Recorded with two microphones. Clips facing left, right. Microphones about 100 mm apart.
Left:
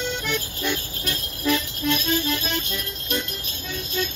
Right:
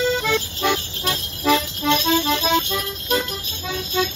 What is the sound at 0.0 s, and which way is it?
Music, 90° right.